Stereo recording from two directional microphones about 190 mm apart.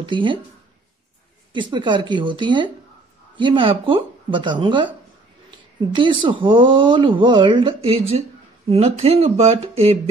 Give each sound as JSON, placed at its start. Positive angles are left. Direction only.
{"t": 0.1, "sound": "speech", "side_deg": -25}
{"t": 1.5, "sound": "speech", "side_deg": -25}